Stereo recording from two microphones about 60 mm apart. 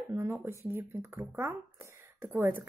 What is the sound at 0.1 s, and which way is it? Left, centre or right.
A woman's voice, right.